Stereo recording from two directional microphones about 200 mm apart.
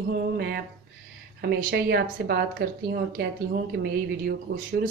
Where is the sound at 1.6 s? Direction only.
50° right (ahead or behind).